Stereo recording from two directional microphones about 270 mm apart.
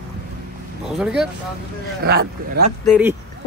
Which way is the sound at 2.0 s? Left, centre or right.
Right.